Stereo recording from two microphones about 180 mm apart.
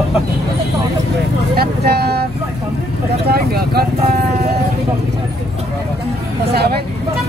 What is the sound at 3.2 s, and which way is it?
Speech, 60° right (ahead or behind).